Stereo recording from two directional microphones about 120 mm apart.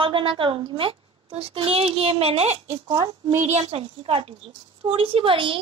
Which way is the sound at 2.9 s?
35° right (ahead or behind).